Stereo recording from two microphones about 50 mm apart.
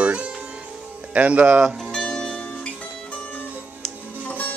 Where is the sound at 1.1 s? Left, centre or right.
Right.